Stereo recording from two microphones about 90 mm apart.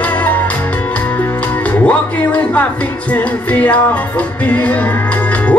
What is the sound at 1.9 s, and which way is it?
Music, 15° left (ahead or behind).